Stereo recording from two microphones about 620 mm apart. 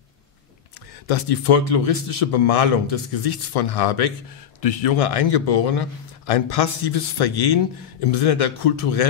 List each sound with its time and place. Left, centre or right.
1.0 s a man's voice: left